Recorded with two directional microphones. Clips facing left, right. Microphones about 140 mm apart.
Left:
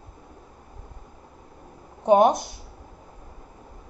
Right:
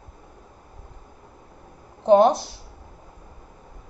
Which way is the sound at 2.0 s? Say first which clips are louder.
Right 2 dB; 10° left (ahead or behind).